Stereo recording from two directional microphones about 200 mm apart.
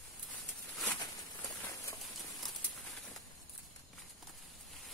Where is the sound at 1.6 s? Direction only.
15° left (ahead or behind).